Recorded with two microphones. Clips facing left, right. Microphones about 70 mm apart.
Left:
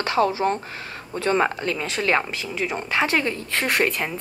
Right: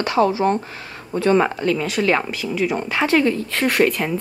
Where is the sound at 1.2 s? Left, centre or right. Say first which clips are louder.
Right 4 dB; left.